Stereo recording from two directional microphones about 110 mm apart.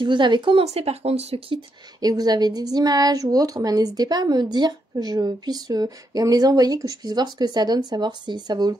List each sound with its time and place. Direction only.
0.0 s speech: 45° right (ahead or behind)
0.7 s speech: 70° right (ahead or behind)
2.0 s a woman's voice: 35° right (ahead or behind)